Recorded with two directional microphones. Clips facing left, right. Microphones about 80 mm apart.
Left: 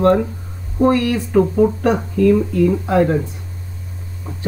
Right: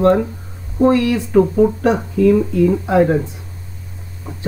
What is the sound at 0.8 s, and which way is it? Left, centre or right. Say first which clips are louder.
Speech: right 1 dB; centre.